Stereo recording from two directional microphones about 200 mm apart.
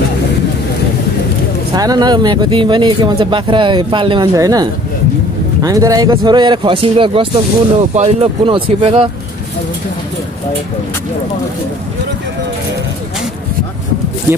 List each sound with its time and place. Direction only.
1.8 s speech: 20° right (ahead or behind)